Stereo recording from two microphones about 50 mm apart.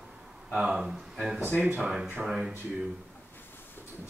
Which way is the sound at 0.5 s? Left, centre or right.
Centre.